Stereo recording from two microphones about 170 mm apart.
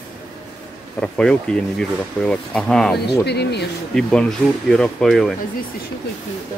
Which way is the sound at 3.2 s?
75° left (ahead or behind).